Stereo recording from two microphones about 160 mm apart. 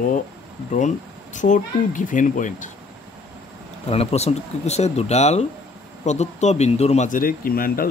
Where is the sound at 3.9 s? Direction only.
40° left (ahead or behind).